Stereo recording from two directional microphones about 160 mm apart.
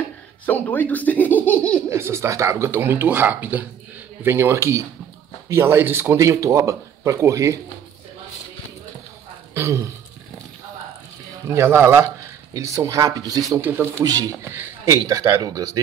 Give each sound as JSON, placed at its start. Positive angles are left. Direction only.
{"t": 0.5, "sound": "speech", "side_deg": 10}
{"t": 1.9, "sound": "speech", "side_deg": -15}
{"t": 9.5, "sound": "speech", "side_deg": -15}
{"t": 11.4, "sound": "speech", "side_deg": -15}
{"t": 14.0, "sound": "speech", "side_deg": -25}